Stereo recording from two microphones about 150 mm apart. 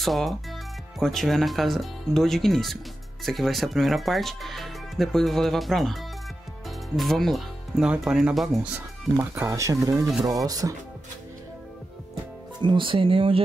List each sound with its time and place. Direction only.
0.0 s speech: centre (ahead or behind); by 10.7 s 25° right (ahead or behind)
12.5 s speech: 30° right (ahead or behind)